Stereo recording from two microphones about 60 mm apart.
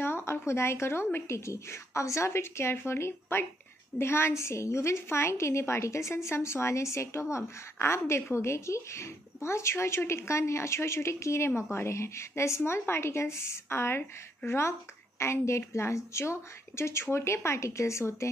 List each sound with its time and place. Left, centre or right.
0.0 s a woman's voice: left